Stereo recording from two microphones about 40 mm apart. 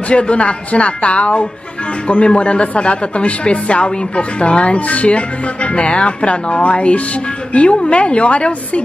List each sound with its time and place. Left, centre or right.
0.1 s speech: left